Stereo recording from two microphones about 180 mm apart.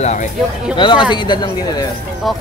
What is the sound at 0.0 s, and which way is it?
Speech, 40° left (ahead or behind).